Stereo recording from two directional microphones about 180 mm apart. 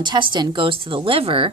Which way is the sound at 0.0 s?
25° right (ahead or behind).